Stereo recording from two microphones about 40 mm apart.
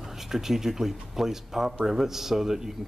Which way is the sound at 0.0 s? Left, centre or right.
Centre.